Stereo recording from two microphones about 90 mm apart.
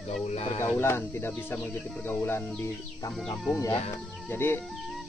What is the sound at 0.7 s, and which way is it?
Speech, 30° left (ahead or behind).